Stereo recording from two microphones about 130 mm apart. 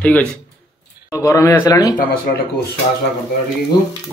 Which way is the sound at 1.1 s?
25° left (ahead or behind).